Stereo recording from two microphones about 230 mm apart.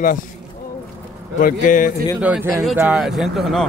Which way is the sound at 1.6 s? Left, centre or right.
Left.